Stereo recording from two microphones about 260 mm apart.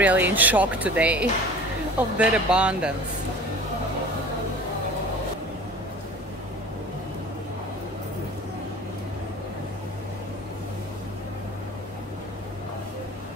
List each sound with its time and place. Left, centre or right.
0.0 s speech: centre